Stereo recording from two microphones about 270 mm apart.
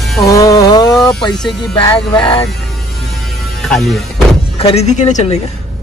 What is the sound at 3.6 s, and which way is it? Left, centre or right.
Speech, centre.